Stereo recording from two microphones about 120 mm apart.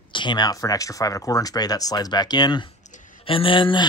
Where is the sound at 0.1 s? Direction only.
40° left (ahead or behind).